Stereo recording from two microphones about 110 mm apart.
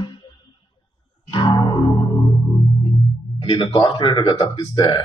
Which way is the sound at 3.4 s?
50° left (ahead or behind).